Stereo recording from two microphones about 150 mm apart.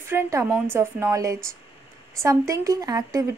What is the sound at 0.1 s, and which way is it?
A woman's voice, 20° right (ahead or behind).